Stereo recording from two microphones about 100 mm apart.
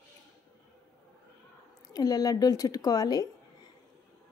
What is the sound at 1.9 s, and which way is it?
Speech, 40° left (ahead or behind).